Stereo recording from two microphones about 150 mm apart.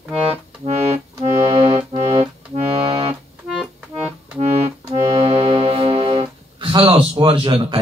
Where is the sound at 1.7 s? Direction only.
30° right (ahead or behind).